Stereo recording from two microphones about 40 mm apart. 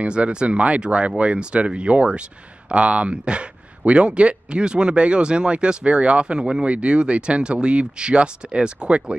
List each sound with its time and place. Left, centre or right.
0.0 s speech: right